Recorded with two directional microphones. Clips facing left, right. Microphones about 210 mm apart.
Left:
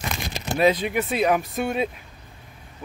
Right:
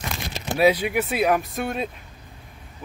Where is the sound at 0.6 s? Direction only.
10° right (ahead or behind).